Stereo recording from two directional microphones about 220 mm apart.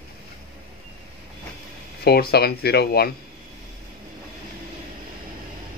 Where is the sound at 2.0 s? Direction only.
45° left (ahead or behind).